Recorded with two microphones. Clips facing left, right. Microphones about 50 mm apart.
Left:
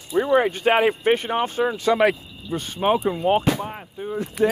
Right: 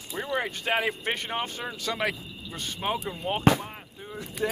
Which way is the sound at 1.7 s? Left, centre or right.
Left.